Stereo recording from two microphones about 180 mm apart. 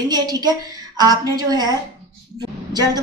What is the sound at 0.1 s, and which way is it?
A woman's voice, 20° right (ahead or behind).